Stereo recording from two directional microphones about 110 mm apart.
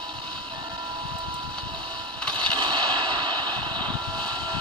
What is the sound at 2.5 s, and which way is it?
Vehicle, 45° right (ahead or behind).